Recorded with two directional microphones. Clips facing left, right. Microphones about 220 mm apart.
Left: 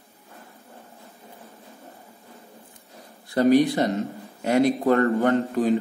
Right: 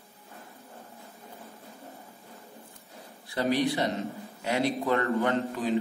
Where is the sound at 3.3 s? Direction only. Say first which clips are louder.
Left 8 dB; 45° left (ahead or behind).